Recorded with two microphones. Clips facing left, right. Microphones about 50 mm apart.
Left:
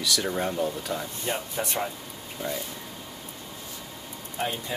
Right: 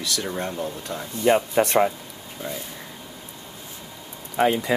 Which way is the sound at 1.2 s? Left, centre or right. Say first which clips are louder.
Right 11 dB; right.